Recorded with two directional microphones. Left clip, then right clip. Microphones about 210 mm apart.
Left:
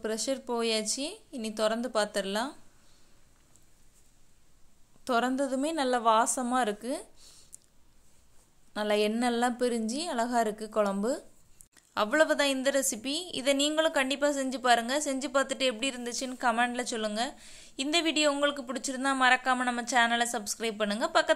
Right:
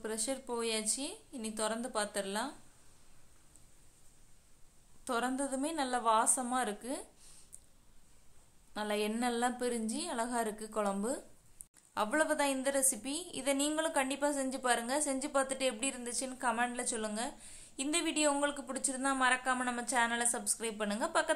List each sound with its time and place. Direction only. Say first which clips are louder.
0.0 s speech: left 6 dB; 25° left (ahead or behind)
5.0 s speech: left 7 dB; 25° left (ahead or behind)
8.7 s a woman's voice: left 8 dB; 25° left (ahead or behind)